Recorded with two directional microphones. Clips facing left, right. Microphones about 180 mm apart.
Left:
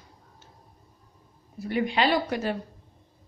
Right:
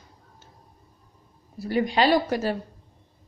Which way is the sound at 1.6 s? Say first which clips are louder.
Right 3 dB; 35° right (ahead or behind).